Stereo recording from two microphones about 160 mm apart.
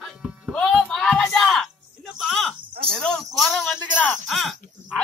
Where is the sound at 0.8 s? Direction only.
5° left (ahead or behind).